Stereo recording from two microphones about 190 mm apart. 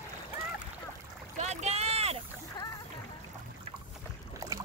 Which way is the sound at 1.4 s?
35° right (ahead or behind).